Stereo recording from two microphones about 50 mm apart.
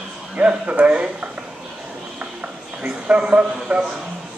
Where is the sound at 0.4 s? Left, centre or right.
Right.